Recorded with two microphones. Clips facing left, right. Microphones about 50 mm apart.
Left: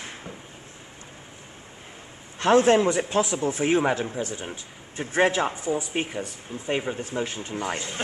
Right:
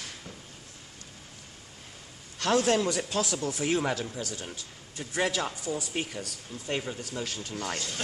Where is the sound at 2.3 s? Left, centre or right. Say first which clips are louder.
Left 7 dB; left.